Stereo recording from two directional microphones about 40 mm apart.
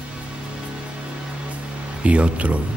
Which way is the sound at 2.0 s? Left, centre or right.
Right.